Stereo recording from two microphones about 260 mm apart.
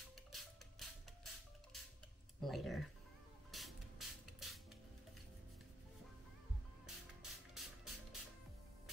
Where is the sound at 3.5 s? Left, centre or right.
Centre.